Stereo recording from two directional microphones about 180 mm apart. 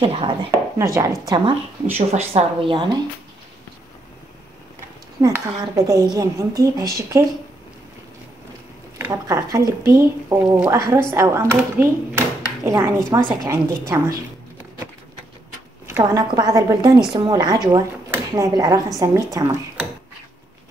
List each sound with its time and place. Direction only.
0.0 s speech: 30° right (ahead or behind)
0.5 s speech: 15° right (ahead or behind)
2.0 s a woman's voice: 35° right (ahead or behind)
5.2 s a woman's voice: 20° right (ahead or behind)
8.9 s speech: 15° right (ahead or behind)
16.0 s a woman's voice: 25° right (ahead or behind)